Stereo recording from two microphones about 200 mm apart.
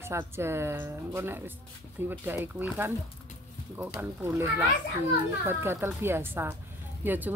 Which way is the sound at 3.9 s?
10° right (ahead or behind).